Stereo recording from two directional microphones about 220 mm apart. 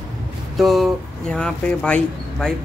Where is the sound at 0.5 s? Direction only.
Centre (ahead or behind).